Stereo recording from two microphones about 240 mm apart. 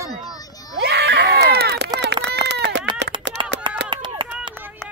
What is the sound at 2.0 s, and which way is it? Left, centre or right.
Run, right.